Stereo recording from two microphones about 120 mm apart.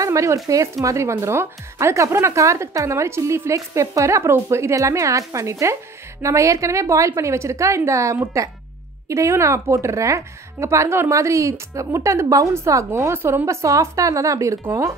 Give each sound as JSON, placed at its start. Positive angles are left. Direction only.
{"t": 0.0, "sound": "a woman's voice", "side_deg": -25}